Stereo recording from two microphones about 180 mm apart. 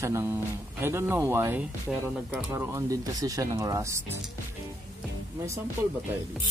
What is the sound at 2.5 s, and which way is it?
Speech, 15° right (ahead or behind).